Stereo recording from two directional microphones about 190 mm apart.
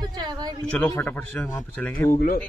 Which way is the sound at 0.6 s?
10° left (ahead or behind).